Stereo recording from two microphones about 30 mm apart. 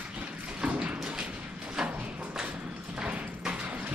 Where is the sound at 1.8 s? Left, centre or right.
Centre.